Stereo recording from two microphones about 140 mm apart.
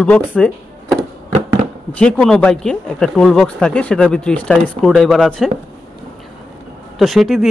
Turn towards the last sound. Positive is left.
turn(degrees=0)  # may be behind; listen again after turning